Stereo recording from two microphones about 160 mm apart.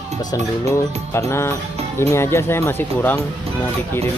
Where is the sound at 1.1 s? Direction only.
20° left (ahead or behind).